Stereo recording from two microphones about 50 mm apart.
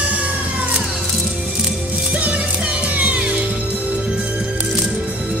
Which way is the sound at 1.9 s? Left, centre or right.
Right.